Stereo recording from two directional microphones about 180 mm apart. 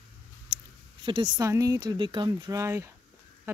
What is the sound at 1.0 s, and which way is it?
Speech, 25° right (ahead or behind).